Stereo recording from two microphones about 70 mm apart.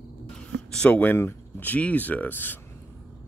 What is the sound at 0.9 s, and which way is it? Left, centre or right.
Speech, left.